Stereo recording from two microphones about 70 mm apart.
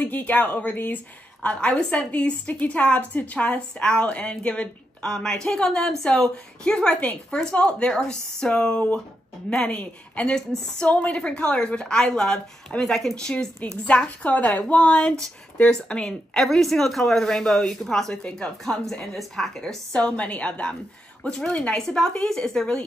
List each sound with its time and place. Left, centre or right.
0.0 s a woman's voice: left; by 19.8 s centre
19.9 s a woman's voice: centre